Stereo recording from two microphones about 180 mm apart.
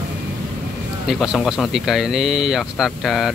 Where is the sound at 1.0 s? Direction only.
Centre (ahead or behind).